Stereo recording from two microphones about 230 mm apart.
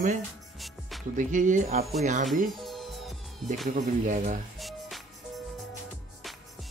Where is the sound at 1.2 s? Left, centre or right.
Right.